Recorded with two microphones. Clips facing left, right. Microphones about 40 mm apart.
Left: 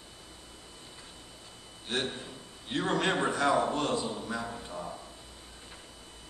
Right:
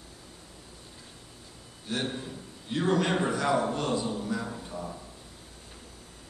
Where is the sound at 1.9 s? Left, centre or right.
Left.